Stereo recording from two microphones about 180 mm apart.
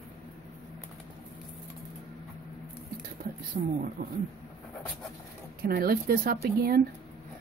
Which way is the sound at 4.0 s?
55° right (ahead or behind).